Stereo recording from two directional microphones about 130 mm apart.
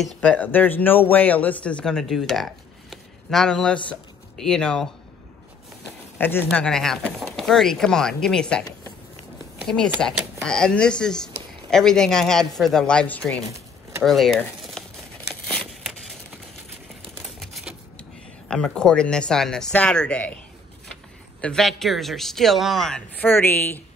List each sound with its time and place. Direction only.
0.2 s speech: 10° left (ahead or behind)
6.1 s speech: 15° left (ahead or behind)
14.0 s crumpling: centre (ahead or behind)
17.2 s a sound: centre (ahead or behind)
18.5 s speech: 5° left (ahead or behind)
21.4 s speech: 5° left (ahead or behind)
23.2 s speech: 15° left (ahead or behind)